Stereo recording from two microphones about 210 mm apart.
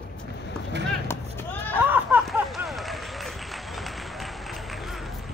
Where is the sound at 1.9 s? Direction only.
10° right (ahead or behind).